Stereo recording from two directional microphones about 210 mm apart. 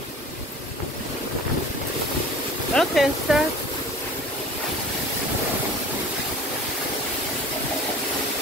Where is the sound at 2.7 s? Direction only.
Centre (ahead or behind).